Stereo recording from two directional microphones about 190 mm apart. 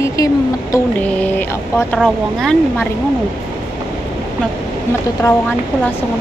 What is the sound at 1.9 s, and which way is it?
Speech, 5° left (ahead or behind).